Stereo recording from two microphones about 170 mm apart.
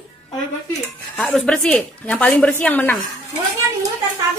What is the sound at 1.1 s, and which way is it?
A woman's voice, 5° left (ahead or behind).